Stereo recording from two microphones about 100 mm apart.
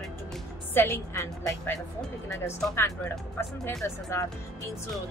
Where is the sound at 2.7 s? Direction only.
25° left (ahead or behind).